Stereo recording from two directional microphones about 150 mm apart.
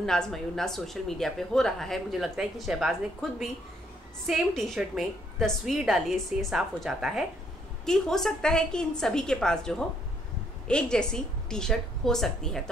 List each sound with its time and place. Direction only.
0.0 s a woman's voice: 5° left (ahead or behind)